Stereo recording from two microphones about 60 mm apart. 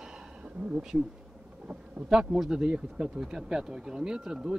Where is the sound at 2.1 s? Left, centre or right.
Centre.